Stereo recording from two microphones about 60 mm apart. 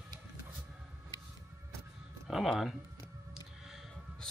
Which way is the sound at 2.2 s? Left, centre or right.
Centre.